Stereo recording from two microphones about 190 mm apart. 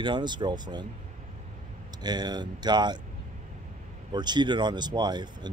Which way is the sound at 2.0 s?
20° right (ahead or behind).